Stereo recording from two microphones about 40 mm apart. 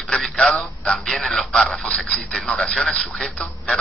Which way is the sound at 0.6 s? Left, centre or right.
Left.